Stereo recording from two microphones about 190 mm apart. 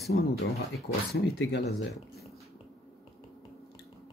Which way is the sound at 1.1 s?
65° left (ahead or behind).